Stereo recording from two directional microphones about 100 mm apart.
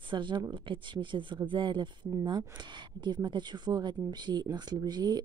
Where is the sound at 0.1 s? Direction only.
55° right (ahead or behind).